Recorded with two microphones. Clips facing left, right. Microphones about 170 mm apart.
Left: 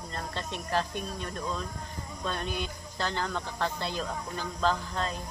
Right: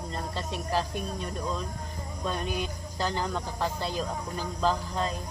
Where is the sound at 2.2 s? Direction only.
10° right (ahead or behind).